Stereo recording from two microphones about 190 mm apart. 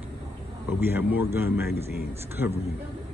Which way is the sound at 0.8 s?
10° right (ahead or behind).